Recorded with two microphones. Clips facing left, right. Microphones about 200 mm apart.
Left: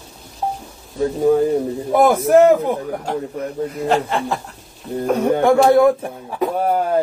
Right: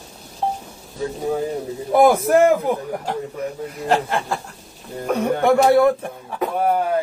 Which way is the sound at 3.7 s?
Centre (ahead or behind).